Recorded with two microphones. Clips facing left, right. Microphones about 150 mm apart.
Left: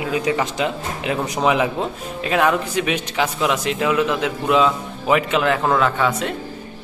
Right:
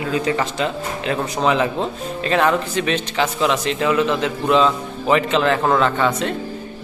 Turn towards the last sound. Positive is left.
turn(degrees=5)  # may be behind; listen again after turning